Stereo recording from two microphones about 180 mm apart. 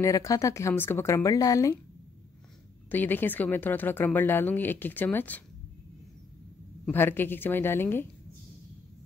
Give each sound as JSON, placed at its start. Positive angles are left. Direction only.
{"t": 0.0, "sound": "speech", "side_deg": 20}
{"t": 2.9, "sound": "speech", "side_deg": 10}
{"t": 6.9, "sound": "speech", "side_deg": 10}